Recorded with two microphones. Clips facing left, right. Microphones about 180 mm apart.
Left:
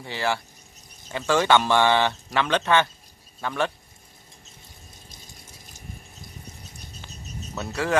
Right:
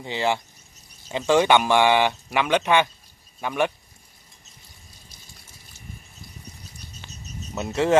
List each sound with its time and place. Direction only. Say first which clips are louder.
0.0 s speech: right 3 dB; 20° right (ahead or behind)
7.5 s speech: right 5 dB; 20° right (ahead or behind)